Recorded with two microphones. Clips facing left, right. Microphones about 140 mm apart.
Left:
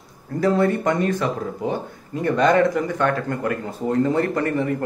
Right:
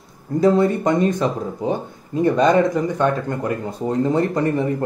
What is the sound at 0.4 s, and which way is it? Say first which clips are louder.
Speech: right 3 dB; 20° right (ahead or behind).